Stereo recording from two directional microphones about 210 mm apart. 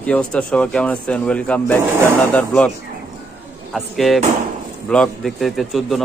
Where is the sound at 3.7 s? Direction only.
Centre (ahead or behind).